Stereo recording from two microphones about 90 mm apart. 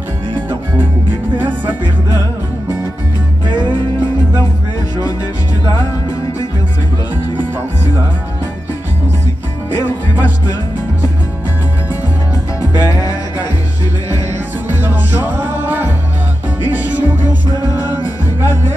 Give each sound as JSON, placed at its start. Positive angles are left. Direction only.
{"t": 9.8, "sound": "music", "side_deg": 50}
{"t": 12.7, "sound": "music", "side_deg": 40}
{"t": 15.1, "sound": "music", "side_deg": -25}